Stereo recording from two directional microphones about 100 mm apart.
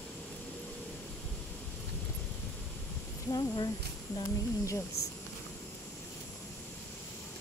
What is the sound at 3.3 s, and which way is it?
Speech, 40° left (ahead or behind).